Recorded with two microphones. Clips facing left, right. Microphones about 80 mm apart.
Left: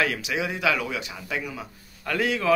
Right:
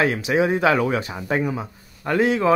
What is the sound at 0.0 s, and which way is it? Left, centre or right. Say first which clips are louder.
A man's voice: right 7 dB; right.